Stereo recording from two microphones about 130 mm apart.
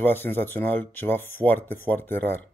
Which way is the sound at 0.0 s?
15° left (ahead or behind).